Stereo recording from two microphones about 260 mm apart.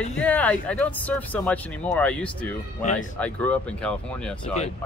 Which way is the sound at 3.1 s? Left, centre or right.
Centre.